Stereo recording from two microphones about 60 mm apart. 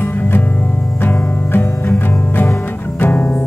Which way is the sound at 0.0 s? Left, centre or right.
Left.